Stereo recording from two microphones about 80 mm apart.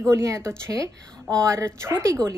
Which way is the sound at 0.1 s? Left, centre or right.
Right.